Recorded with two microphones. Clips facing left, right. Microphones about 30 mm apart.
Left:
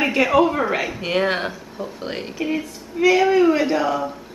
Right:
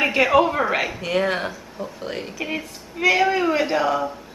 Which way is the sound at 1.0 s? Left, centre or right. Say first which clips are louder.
Left 1 dB; centre.